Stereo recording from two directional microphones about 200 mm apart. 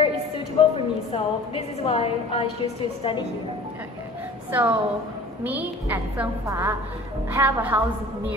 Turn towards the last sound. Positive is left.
turn(degrees=-10)  # may be behind; listen again after turning